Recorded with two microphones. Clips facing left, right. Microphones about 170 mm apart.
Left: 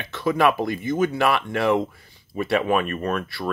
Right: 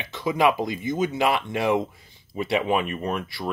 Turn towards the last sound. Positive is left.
turn(degrees=-15)  # may be behind; listen again after turning